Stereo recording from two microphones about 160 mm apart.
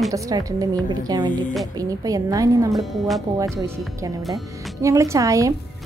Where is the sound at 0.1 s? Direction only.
20° right (ahead or behind).